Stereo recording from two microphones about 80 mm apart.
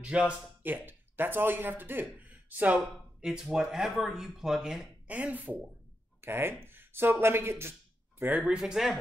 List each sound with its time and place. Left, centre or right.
0.0 s speech: centre
0.6 s speech: right; by 4.8 s centre
5.0 s speech: centre
8.2 s speech: centre
8.5 s speech: centre